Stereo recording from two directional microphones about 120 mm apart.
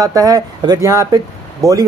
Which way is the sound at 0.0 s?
30° right (ahead or behind).